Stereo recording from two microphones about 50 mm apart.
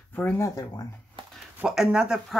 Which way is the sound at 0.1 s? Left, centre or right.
Left.